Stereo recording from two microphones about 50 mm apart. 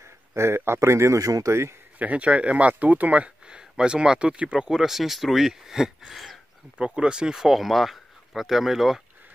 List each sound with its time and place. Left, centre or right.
0.3 s a man's voice: right
2.0 s speech: right
3.4 s speech: centre
6.8 s speech: centre
7.4 s speech: centre